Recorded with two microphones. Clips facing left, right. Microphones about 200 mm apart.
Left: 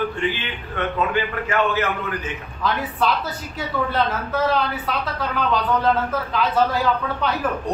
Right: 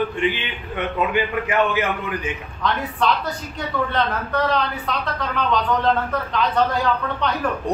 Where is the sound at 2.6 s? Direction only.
5° left (ahead or behind).